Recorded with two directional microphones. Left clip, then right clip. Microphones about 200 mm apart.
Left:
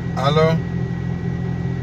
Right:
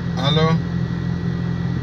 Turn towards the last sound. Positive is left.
turn(degrees=50)  # may be behind; listen again after turning